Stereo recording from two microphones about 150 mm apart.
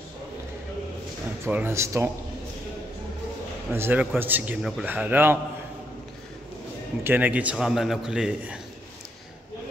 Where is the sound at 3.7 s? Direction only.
15° right (ahead or behind).